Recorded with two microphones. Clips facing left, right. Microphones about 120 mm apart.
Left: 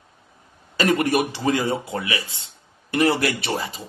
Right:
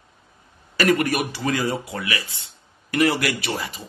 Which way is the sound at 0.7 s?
25° left (ahead or behind).